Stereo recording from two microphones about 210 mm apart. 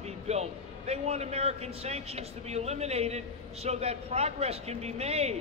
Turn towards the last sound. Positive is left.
turn(degrees=-30)  # may be behind; listen again after turning